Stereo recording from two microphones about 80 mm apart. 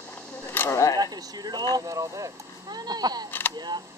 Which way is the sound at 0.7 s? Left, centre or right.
Left.